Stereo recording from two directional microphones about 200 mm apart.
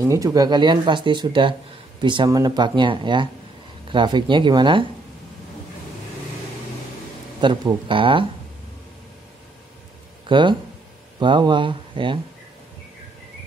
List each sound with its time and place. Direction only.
0.0 s speech: 15° right (ahead or behind)
7.3 s speech: 25° right (ahead or behind)
10.2 s speech: 25° right (ahead or behind)